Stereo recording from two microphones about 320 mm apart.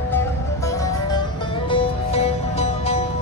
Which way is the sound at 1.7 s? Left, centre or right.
Centre.